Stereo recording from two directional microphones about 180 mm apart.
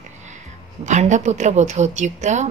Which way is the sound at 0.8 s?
40° right (ahead or behind).